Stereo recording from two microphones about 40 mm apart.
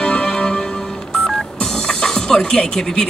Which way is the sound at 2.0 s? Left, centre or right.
Centre.